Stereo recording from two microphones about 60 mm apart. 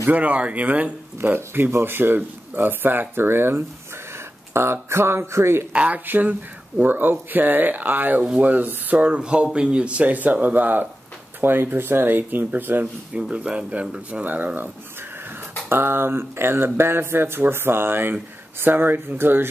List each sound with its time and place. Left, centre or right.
0.1 s speech: right
1.3 s speech: right
5.7 s speech: right
13.1 s speech: centre
14.2 s speech: right
15.7 s speech: right